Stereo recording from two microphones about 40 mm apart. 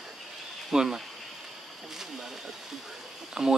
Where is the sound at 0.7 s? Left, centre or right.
Centre.